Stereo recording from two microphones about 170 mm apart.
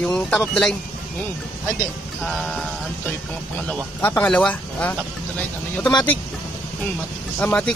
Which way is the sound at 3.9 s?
10° left (ahead or behind).